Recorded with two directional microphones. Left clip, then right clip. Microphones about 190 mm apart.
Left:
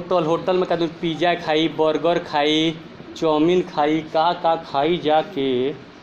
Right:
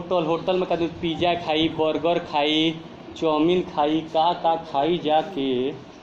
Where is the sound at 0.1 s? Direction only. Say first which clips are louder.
Left 3 dB; 20° left (ahead or behind).